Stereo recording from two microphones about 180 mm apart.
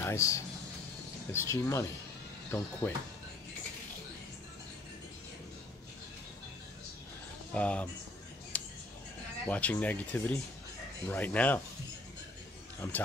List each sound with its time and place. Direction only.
0.0 s a man's voice: 15° left (ahead or behind)
7.5 s speech: 5° left (ahead or behind)
8.5 s a sound: 5° left (ahead or behind)
9.5 s speech: 10° left (ahead or behind)
12.8 s speech: 15° left (ahead or behind)